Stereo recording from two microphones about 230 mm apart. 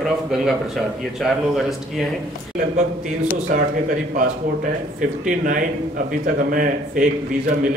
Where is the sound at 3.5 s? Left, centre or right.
Right.